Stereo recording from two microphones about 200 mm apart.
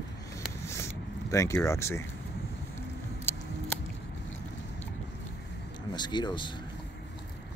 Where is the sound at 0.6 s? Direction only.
15° left (ahead or behind).